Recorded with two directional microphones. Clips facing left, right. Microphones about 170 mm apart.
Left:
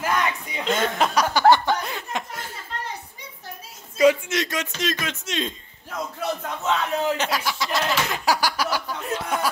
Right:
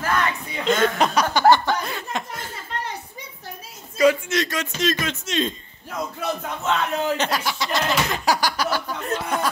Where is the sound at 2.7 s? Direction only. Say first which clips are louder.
Right 3 dB; 70° right (ahead or behind).